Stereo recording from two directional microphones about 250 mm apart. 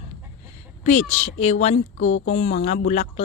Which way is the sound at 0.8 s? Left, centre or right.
Left.